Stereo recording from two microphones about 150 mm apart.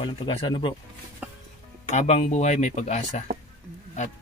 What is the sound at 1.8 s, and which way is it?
Speech, 50° left (ahead or behind).